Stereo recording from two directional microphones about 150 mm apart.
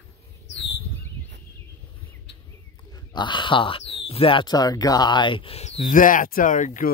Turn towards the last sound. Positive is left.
turn(degrees=60)  # may be behind; listen again after turning